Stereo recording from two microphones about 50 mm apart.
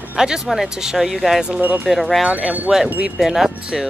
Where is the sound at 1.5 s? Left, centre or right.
Right.